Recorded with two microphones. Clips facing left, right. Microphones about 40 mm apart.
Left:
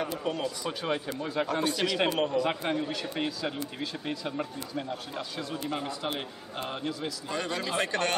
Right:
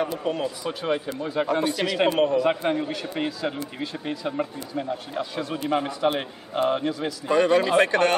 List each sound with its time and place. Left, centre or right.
0.0 s speech: centre
5.7 s a man's voice: right